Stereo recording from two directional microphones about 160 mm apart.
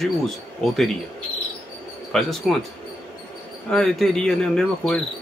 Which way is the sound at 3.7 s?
5° left (ahead or behind).